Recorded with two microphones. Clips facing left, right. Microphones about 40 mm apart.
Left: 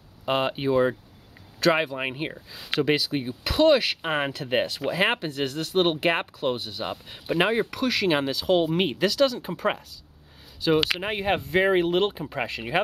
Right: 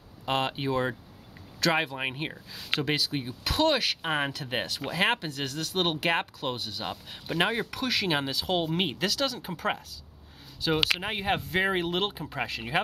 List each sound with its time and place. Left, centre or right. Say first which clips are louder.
0.2 s speech: left 4 dB; centre
2.0 s speech: left 3 dB; centre
4.0 s speech: left 3 dB; centre
5.1 s speech: left 4 dB; left
6.5 s speech: left 4 dB; left
6.8 s speech: left 4 dB; centre